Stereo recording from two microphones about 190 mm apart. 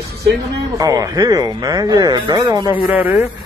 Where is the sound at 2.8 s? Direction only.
10° right (ahead or behind).